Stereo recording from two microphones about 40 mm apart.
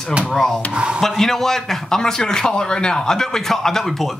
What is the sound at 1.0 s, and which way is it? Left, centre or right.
A man's voice, centre.